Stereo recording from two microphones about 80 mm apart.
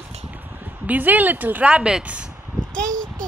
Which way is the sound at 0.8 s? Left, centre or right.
Right.